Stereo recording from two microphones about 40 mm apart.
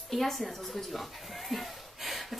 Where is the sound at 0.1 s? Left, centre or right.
Centre.